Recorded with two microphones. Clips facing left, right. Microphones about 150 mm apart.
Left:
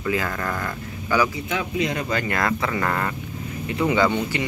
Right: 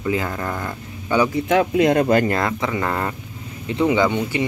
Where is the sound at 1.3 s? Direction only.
55° right (ahead or behind).